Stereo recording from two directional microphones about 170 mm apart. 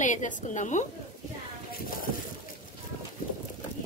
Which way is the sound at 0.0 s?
45° left (ahead or behind).